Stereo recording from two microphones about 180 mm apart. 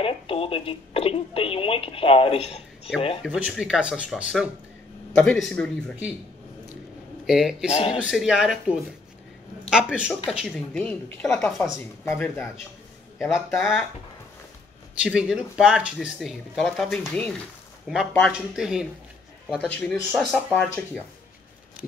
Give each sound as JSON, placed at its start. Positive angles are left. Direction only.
{"t": 0.0, "sound": "speech", "side_deg": 30}
{"t": 3.3, "sound": "speech", "side_deg": -5}
{"t": 7.2, "sound": "speech", "side_deg": -5}
{"t": 7.7, "sound": "speech", "side_deg": 35}
{"t": 8.0, "sound": "speech", "side_deg": -5}
{"t": 11.6, "sound": "speech", "side_deg": 15}
{"t": 13.3, "sound": "speech", "side_deg": 0}
{"t": 15.0, "sound": "speech", "side_deg": -5}
{"t": 18.3, "sound": "speech", "side_deg": -5}
{"t": 20.1, "sound": "speech", "side_deg": -5}
{"t": 20.5, "sound": "speech", "side_deg": 10}